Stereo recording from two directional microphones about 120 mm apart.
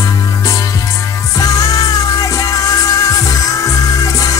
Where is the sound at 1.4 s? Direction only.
30° left (ahead or behind).